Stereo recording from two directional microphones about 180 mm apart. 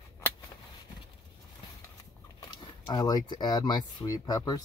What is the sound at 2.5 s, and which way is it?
Speech, 25° left (ahead or behind).